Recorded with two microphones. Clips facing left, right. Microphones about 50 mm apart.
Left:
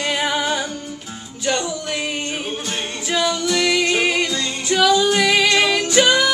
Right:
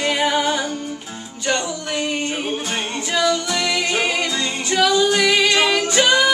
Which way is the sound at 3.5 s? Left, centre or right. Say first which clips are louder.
Left 3 dB; centre.